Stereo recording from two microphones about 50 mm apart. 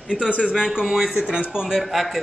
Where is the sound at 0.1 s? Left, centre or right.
Centre.